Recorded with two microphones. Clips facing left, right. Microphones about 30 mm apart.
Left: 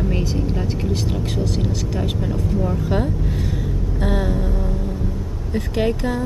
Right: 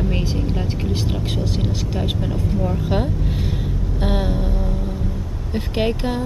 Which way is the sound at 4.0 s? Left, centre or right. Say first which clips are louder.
Even; right.